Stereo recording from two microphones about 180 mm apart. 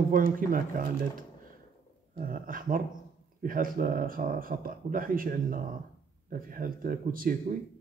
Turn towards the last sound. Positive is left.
turn(degrees=-50)  # may be behind; listen again after turning